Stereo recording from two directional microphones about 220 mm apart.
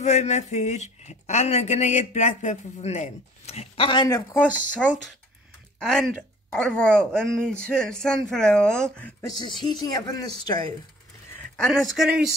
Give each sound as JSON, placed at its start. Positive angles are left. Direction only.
{"t": 0.0, "sound": "a man's voice", "side_deg": 30}
{"t": 4.3, "sound": "speech", "side_deg": 5}
{"t": 9.6, "sound": "speech", "side_deg": 20}
{"t": 11.7, "sound": "speech", "side_deg": -5}